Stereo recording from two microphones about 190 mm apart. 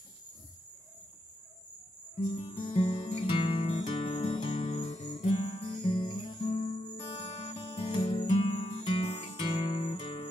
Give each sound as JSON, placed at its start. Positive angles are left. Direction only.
{"t": 2.3, "sound": "music", "side_deg": 30}